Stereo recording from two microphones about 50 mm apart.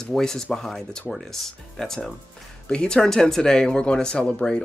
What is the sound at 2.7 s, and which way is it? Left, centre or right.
Speech, centre.